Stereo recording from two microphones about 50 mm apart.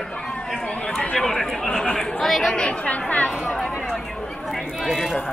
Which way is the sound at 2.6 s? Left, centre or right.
Left.